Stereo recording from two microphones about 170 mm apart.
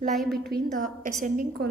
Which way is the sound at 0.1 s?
Centre (ahead or behind).